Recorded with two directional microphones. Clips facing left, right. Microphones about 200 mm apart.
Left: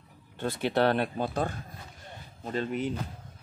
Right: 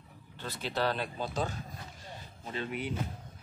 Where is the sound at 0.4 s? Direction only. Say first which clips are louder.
Left 7 dB; 55° left (ahead or behind).